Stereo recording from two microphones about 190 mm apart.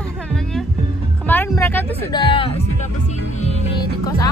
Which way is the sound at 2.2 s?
30° left (ahead or behind).